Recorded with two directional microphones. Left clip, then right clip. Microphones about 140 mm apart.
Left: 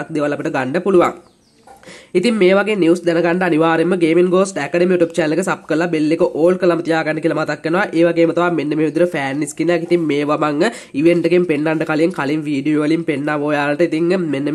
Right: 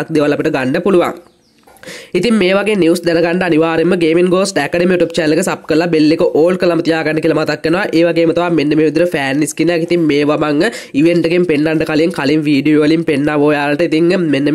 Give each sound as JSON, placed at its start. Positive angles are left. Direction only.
{"t": 0.1, "sound": "speech", "side_deg": -30}
{"t": 2.1, "sound": "speech", "side_deg": -35}